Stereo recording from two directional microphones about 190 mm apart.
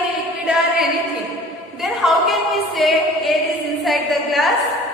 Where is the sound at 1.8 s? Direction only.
Centre (ahead or behind).